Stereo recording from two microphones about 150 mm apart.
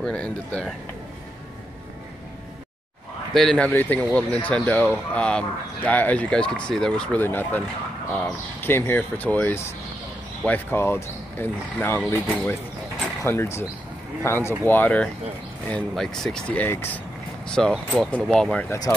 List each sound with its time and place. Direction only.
0.0 s speech: 5° left (ahead or behind)
3.3 s speech: 5° left (ahead or behind)
18.7 s speech: 15° left (ahead or behind)